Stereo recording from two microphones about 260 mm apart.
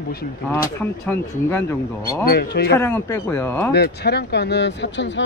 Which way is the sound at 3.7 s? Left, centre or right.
Left.